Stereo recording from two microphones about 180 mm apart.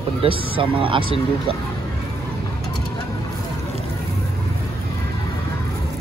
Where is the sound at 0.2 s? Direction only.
30° right (ahead or behind).